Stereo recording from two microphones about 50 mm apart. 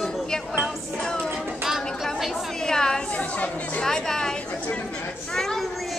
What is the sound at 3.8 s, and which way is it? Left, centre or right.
Chatter, centre.